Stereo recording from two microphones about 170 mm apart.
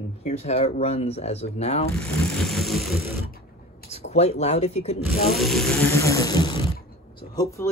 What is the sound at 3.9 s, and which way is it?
Speech, 40° left (ahead or behind).